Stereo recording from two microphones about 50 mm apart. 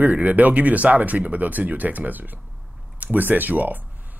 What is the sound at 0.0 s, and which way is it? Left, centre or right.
A man's voice, right.